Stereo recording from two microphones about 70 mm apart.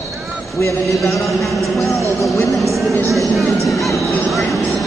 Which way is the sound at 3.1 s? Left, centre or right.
Centre.